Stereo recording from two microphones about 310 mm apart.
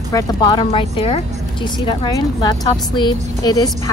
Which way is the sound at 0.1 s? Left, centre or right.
Centre.